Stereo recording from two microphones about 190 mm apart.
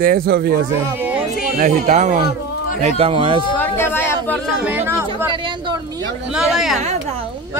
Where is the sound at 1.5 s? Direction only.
40° right (ahead or behind).